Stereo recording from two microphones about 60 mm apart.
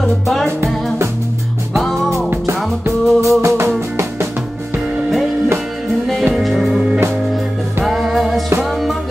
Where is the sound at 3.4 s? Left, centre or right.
Right.